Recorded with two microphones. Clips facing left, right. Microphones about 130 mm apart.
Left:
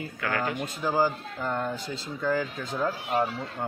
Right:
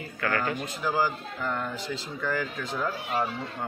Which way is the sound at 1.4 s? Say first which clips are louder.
Left 2 dB; 30° left (ahead or behind).